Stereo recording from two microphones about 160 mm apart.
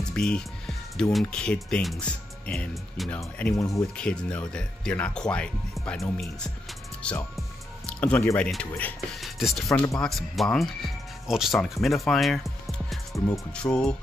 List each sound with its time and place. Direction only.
0.1 s music: 5° left (ahead or behind)
1.1 s speech: 5° left (ahead or behind)
3.5 s speech: 20° left (ahead or behind)
3.9 s speech: 5° left (ahead or behind)
7.0 s music: 5° left (ahead or behind)
8.5 s speech: 5° left (ahead or behind)